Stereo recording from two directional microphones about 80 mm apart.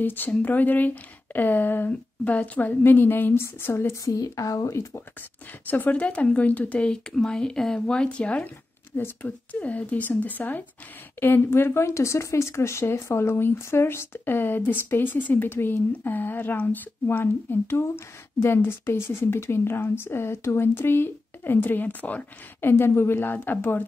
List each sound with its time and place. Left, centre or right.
0.0 s speech: left
5.7 s speech: left